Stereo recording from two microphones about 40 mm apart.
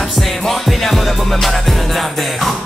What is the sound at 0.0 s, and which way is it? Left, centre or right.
Music, centre.